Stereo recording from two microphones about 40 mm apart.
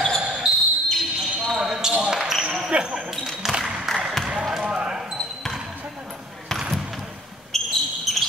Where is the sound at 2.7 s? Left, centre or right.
Right.